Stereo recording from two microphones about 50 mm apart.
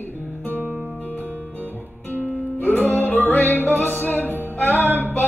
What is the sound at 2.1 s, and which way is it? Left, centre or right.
Music, left.